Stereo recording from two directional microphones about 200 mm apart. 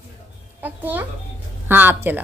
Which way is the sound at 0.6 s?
10° right (ahead or behind).